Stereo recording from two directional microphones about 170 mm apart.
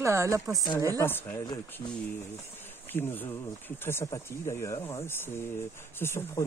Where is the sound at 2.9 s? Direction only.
10° left (ahead or behind).